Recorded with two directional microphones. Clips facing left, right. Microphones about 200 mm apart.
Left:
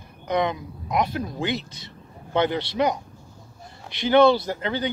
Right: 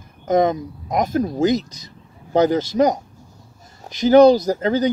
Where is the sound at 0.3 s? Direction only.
45° right (ahead or behind).